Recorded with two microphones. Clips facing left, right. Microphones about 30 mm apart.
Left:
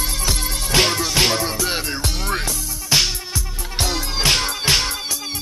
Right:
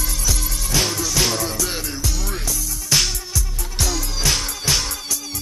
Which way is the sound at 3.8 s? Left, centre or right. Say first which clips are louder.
Left 2 dB; left.